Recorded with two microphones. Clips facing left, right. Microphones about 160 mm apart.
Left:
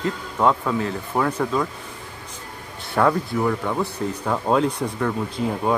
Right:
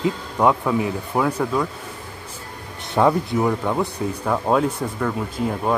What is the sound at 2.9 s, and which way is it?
Speech, 20° right (ahead or behind).